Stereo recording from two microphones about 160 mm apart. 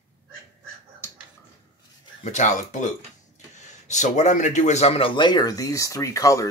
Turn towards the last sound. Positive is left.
turn(degrees=20)  # may be behind; listen again after turning